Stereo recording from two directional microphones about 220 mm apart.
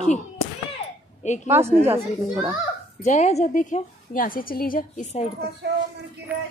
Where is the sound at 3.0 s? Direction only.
30° left (ahead or behind).